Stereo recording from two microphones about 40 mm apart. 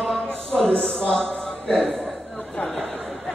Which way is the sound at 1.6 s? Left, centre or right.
Centre.